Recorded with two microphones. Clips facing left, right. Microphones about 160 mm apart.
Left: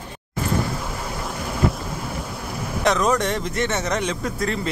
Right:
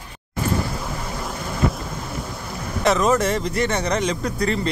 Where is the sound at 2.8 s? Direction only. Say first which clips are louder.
Right 2 dB; centre (ahead or behind).